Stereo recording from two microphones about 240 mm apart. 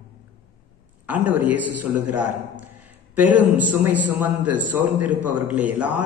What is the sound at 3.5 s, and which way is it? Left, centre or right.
A man's voice, centre.